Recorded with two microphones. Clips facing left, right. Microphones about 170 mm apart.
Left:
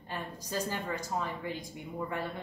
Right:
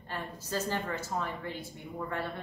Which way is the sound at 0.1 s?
15° left (ahead or behind).